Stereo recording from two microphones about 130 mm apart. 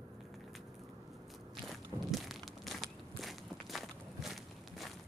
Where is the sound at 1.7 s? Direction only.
Centre (ahead or behind).